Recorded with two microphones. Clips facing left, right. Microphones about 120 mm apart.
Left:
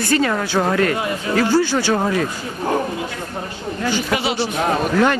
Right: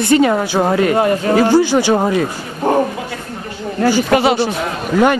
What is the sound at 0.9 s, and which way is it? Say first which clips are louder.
Speech: right 9 dB; 50° right (ahead or behind).